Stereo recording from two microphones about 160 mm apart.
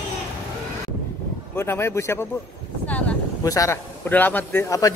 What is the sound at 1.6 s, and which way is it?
Speech, 15° left (ahead or behind).